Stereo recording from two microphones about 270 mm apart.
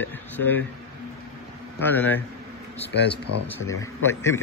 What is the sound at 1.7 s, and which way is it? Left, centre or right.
Speech, centre.